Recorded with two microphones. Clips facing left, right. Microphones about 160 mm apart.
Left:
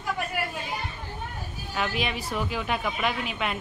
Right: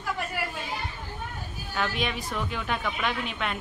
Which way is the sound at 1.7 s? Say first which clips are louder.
Even; 5° left (ahead or behind).